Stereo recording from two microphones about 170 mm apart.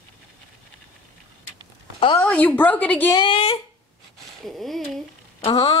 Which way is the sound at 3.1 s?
30° left (ahead or behind).